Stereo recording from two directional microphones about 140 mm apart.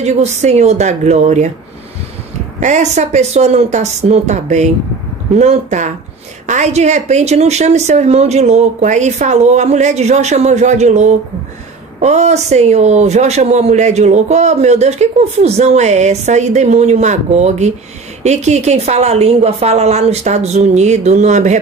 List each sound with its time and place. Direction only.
0.0 s speech: 55° right (ahead or behind)
2.6 s speech: 60° right (ahead or behind)